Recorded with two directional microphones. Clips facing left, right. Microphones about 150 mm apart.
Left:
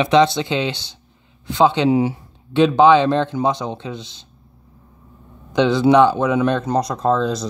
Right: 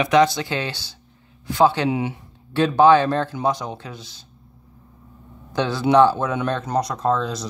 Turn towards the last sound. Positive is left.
turn(degrees=25)  # may be behind; listen again after turning